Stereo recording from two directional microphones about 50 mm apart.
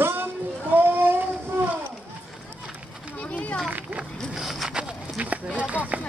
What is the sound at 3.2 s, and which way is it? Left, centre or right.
Children playing, left.